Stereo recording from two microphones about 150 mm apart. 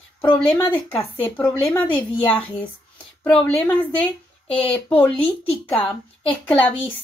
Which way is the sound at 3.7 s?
10° left (ahead or behind).